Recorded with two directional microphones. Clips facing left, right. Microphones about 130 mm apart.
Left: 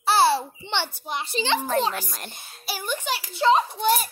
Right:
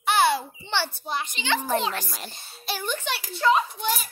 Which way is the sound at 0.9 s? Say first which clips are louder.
Right 1 dB; 15° left (ahead or behind).